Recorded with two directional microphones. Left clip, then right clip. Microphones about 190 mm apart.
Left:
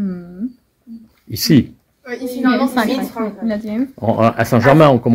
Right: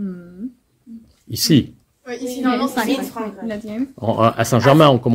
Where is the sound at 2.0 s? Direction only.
40° left (ahead or behind).